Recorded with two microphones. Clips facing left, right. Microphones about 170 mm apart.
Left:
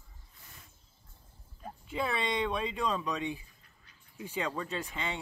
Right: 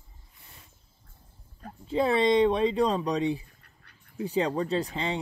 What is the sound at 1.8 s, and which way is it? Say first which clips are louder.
Speech: right 10 dB; 35° right (ahead or behind).